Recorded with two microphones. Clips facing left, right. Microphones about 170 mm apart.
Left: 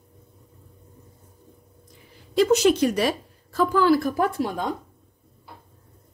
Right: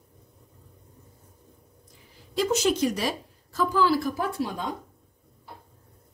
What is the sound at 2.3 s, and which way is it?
A woman's voice, 65° left (ahead or behind).